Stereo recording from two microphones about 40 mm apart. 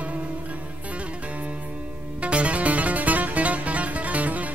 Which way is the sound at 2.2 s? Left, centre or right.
Right.